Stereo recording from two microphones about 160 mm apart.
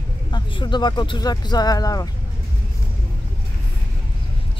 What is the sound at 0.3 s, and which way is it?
Speech, 30° left (ahead or behind).